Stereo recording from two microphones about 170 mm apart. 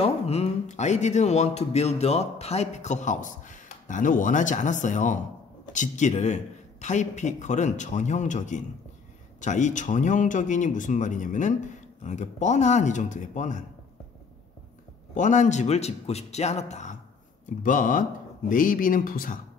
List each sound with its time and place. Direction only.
0.0 s speech: 40° left (ahead or behind)
15.1 s a man's voice: 45° left (ahead or behind)